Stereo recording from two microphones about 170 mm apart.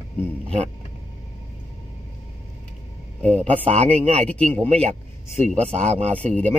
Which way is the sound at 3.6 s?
40° right (ahead or behind).